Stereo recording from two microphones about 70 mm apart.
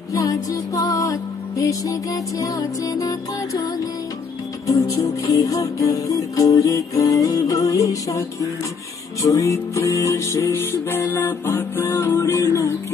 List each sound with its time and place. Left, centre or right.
0.1 s music: left
4.6 s music: left